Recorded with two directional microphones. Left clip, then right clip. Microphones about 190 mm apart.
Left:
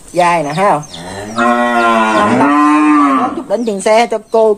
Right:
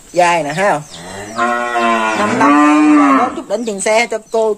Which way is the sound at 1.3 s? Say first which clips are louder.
Left 4 dB; 40° left (ahead or behind).